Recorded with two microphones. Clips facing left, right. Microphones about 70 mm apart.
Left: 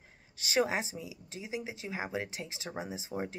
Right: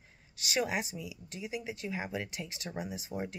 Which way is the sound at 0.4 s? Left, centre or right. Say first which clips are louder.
Left 3 dB; left.